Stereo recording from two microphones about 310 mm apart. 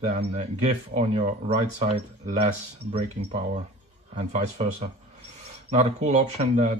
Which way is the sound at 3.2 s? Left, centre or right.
Right.